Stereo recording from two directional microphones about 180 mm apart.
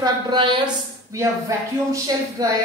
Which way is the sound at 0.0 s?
25° right (ahead or behind).